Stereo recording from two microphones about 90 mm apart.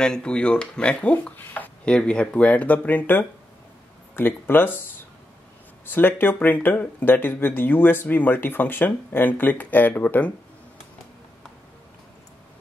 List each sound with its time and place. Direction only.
0.0 s speech: 10° left (ahead or behind)
5.9 s speech: 20° left (ahead or behind)